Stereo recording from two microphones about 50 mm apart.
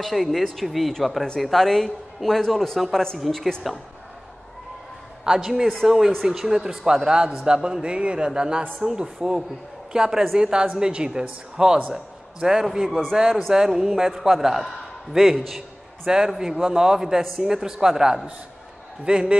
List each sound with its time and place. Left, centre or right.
0.0 s a man's voice: centre
5.2 s a man's voice: centre
16.1 s speech: centre